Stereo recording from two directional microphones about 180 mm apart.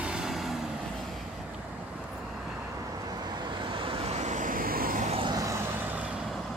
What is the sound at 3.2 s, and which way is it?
Vehicle, 25° right (ahead or behind).